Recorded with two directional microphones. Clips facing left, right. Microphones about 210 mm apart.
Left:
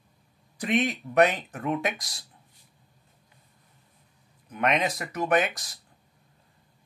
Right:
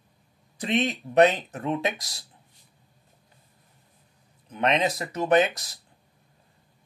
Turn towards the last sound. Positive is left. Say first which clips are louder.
# right 4 dB
turn(degrees=-25)  # may be behind; listen again after turning